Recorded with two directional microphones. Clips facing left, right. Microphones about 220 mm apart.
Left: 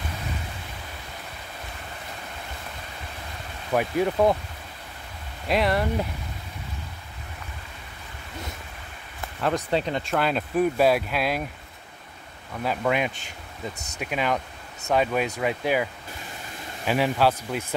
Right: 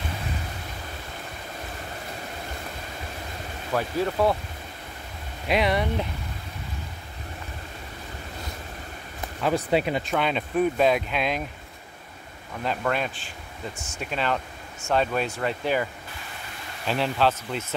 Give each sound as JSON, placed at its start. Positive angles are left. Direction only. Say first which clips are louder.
{"t": 3.7, "sound": "speech", "louder": "left 2 dB", "side_deg": 15}
{"t": 5.5, "sound": "speech", "louder": "even", "side_deg": 0}
{"t": 9.7, "sound": "speech", "louder": "right 2 dB", "side_deg": -10}
{"t": 12.6, "sound": "speech", "louder": "left 2 dB", "side_deg": 10}